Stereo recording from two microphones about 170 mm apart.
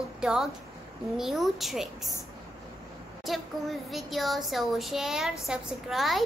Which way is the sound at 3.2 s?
Centre (ahead or behind).